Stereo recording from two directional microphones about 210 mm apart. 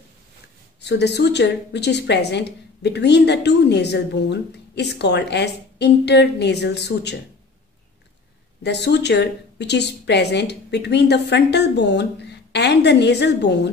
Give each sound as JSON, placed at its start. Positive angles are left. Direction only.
{"t": 0.7, "sound": "a woman's voice", "side_deg": 55}
{"t": 8.6, "sound": "a woman's voice", "side_deg": 55}